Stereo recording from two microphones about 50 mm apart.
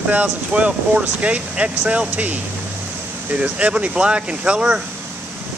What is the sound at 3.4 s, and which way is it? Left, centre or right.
Speech, right.